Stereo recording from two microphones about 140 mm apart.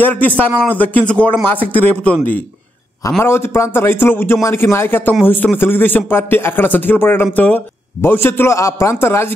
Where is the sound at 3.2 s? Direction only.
15° left (ahead or behind).